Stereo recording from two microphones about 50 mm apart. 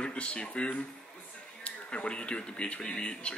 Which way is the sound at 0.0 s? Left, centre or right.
Left.